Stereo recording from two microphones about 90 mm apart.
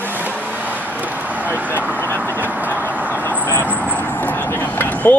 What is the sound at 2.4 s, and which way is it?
Vehicle, 20° right (ahead or behind).